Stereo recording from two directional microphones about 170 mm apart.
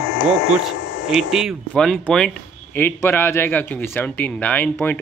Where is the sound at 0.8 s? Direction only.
90° left.